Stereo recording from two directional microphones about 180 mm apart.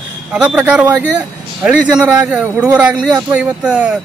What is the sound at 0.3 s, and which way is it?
Speech, 5° right (ahead or behind).